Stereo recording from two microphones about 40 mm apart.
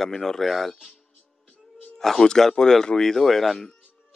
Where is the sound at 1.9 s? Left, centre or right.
Centre.